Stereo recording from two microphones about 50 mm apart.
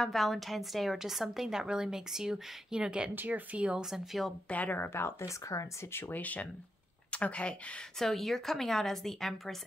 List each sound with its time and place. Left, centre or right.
0.0 s a woman's voice: centre
3.2 s speech: right
3.8 s a woman's voice: centre
4.5 s speech: left
4.7 s speech: left
6.1 s speech: left
8.0 s a woman's voice: centre